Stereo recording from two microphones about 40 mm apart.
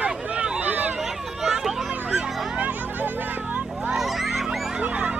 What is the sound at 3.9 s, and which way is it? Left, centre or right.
Honk, centre.